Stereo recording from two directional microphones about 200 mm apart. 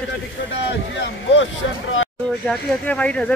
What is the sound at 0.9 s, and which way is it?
Speech, 70° left (ahead or behind).